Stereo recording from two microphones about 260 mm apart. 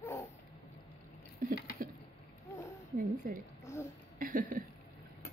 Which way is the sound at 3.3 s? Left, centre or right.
Right.